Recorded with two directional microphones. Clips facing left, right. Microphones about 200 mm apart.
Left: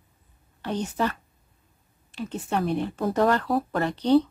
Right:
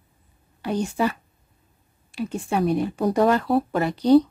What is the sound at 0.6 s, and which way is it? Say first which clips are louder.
Speech: right 4 dB; 10° right (ahead or behind).